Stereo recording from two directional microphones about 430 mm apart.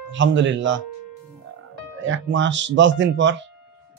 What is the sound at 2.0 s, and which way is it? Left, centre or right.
Speech, right.